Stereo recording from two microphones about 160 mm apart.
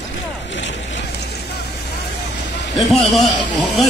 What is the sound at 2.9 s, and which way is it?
Speech, centre (ahead or behind).